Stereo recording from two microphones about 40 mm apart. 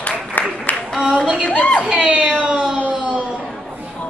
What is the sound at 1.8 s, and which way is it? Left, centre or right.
Speech, right.